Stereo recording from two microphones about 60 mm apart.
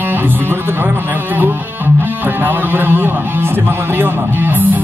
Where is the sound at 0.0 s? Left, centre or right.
Right.